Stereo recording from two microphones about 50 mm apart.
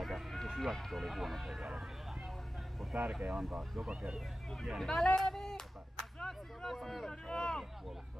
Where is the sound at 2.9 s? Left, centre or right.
Right.